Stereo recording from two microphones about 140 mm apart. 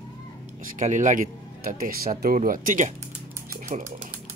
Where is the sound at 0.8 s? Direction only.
65° right (ahead or behind).